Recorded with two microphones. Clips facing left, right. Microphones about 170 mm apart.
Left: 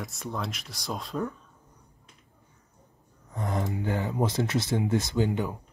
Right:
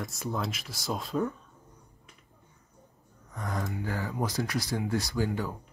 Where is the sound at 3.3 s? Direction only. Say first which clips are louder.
Left 4 dB; 25° left (ahead or behind).